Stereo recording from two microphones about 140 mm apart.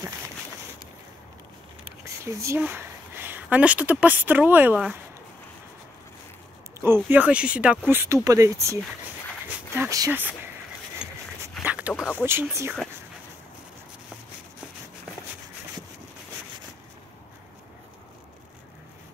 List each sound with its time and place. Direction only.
2.0 s speech: 20° right (ahead or behind)
6.8 s a sound: 20° right (ahead or behind)
7.1 s speech: 10° right (ahead or behind)
9.8 s speech: 20° right (ahead or behind)
11.0 s dog: 5° right (ahead or behind)
11.4 s a sound: 10° right (ahead or behind)
12.2 s speech: 15° right (ahead or behind)